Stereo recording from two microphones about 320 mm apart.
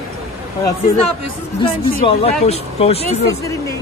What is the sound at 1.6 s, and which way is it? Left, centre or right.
Speech, centre.